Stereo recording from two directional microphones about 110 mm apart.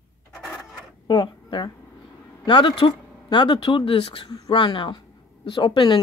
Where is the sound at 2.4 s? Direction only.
45° left (ahead or behind).